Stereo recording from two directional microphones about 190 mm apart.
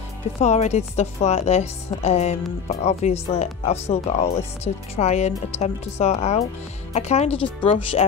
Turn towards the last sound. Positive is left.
turn(degrees=30)  # may be behind; listen again after turning